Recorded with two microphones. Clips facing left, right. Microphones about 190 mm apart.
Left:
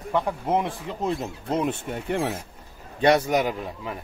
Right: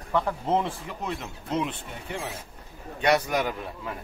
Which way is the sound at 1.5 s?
50° left (ahead or behind).